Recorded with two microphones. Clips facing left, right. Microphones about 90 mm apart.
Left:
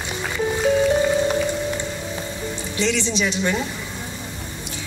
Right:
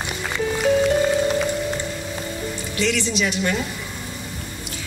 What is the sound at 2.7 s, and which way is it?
Speech, 20° left (ahead or behind).